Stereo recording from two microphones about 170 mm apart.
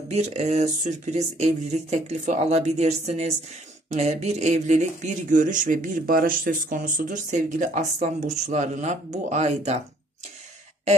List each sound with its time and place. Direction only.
0.1 s speech: 40° right (ahead or behind)